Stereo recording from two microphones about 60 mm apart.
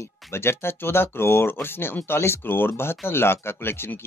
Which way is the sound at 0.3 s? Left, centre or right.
Left.